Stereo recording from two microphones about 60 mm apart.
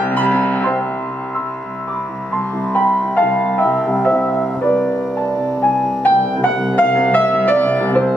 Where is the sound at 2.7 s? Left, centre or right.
Left.